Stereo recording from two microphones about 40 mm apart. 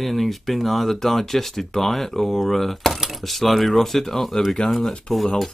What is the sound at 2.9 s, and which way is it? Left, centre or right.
Speech, centre.